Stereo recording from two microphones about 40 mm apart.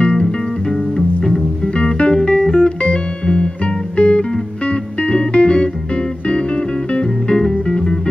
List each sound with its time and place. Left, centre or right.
0.0 s music: centre
1.8 s music: left
7.3 s music: centre